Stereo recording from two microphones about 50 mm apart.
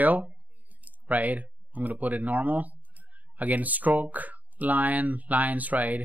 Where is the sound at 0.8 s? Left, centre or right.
Right.